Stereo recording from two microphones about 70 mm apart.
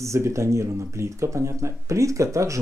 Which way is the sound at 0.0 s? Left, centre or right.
Right.